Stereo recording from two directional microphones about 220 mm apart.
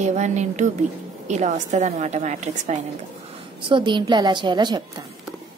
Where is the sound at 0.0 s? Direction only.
30° right (ahead or behind).